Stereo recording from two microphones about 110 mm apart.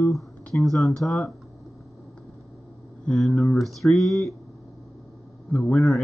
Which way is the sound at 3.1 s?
10° left (ahead or behind).